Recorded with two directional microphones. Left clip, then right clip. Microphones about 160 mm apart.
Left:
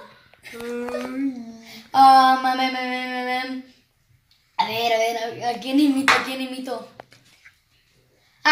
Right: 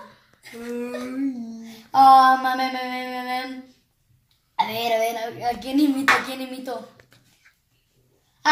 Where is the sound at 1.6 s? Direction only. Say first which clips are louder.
Even; centre (ahead or behind).